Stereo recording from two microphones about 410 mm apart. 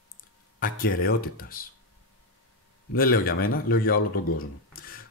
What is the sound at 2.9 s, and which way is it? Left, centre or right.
Speech, left.